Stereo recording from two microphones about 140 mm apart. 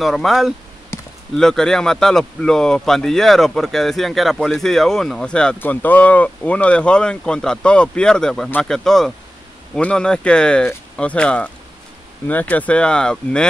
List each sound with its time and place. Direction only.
0.0 s speech: centre (ahead or behind)
0.9 s basketball bounce: 20° left (ahead or behind)
1.3 s speech: 5° left (ahead or behind)